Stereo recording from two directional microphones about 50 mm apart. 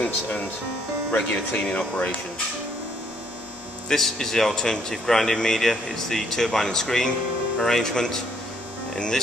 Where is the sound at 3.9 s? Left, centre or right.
Centre.